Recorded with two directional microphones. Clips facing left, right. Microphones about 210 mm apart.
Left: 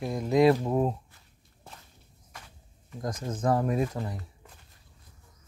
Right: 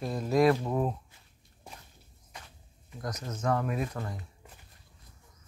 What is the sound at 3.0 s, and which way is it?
Speech, 30° left (ahead or behind).